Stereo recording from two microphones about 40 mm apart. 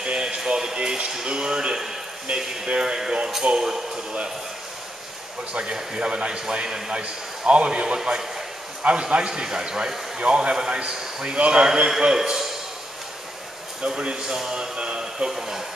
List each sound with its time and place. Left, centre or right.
0.0 s a sound: right
2.5 s a man's voice: centre
5.5 s a man's voice: right
11.3 s a man's voice: right; by 12.4 s centre
13.8 s a man's voice: right